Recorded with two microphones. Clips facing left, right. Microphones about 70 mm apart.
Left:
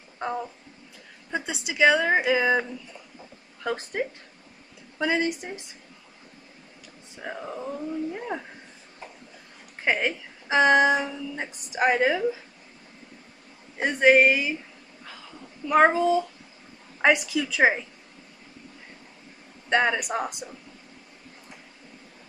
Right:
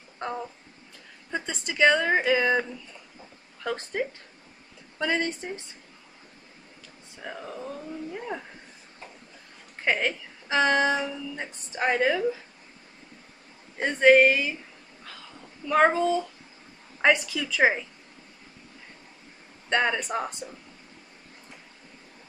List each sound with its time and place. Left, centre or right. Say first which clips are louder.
0.2 s a woman's voice: left 3 dB; centre
3.6 s a woman's voice: left 1 dB; centre
7.2 s a sound: left 3 dB; centre
9.8 s a woman's voice: left 1 dB; centre
13.7 s a woman's voice: right 1 dB; centre
15.6 s a woman's voice: left 2 dB; centre
19.7 s a woman's voice: left 2 dB; centre